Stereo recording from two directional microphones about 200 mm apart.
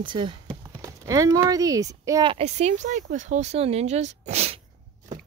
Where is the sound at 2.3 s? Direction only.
35° right (ahead or behind).